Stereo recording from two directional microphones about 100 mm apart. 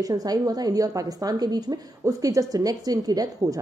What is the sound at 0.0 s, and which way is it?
A woman's voice, 40° right (ahead or behind).